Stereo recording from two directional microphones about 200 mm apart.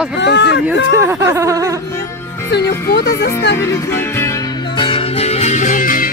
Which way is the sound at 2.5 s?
55° left (ahead or behind).